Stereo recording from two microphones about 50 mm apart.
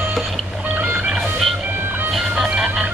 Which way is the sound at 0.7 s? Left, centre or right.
Right.